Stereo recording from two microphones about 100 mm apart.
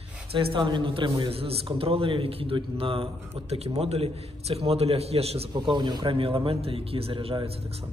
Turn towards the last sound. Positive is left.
turn(degrees=-70)  # may be behind; listen again after turning